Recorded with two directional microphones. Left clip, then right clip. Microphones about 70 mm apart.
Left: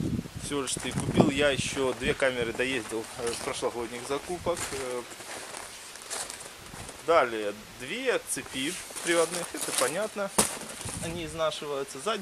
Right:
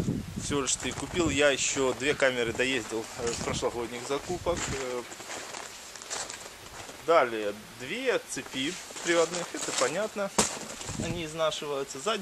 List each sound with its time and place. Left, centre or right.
0.5 s speech: right; by 4.2 s centre
4.6 s speech: left
7.1 s speech: left
11.1 s speech: centre